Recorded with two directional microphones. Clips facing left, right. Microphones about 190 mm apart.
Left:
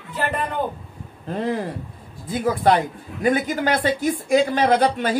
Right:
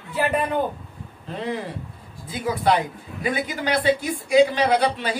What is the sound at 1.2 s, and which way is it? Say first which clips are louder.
A man's voice: left 4 dB; 50° left (ahead or behind).